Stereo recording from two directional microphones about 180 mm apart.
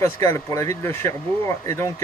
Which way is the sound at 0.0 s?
15° left (ahead or behind).